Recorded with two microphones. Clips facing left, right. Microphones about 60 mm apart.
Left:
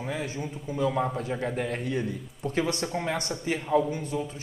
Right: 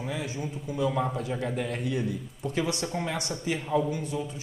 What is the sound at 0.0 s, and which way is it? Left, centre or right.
Speech, left.